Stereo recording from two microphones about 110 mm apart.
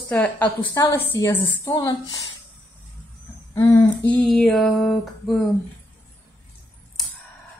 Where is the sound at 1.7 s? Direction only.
35° left (ahead or behind).